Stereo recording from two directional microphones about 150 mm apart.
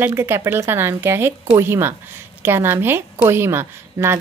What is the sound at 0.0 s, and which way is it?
Speech, 15° right (ahead or behind).